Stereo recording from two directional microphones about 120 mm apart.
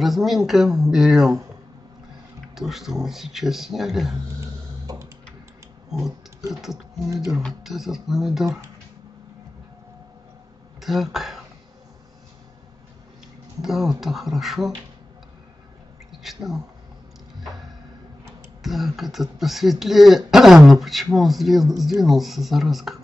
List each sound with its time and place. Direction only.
0.0 s speech: centre (ahead or behind)
2.5 s speech: 5° right (ahead or behind)
4.4 s a sound: 25° right (ahead or behind)
5.9 s a sound: 5° right (ahead or behind)
6.5 s speech: centre (ahead or behind)
10.8 s speech: centre (ahead or behind)
13.6 s speech: 5° right (ahead or behind)
16.1 s speech: centre (ahead or behind)
18.6 s speech: centre (ahead or behind)